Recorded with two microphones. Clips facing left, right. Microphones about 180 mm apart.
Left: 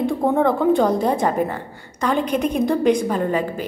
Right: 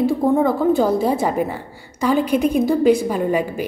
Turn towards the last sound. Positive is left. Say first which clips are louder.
# right 1 dB
turn(degrees=-10)  # may be behind; listen again after turning